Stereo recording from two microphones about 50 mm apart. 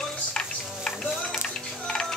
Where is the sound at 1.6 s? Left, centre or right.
Centre.